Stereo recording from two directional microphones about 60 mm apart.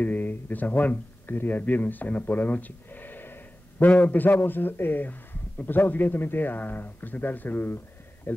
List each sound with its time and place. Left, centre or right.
0.0 s a man's voice: left